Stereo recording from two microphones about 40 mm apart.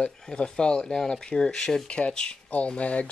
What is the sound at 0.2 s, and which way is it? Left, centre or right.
Speech, left.